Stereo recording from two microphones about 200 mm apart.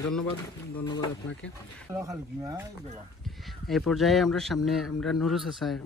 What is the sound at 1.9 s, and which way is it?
Speech, 15° right (ahead or behind).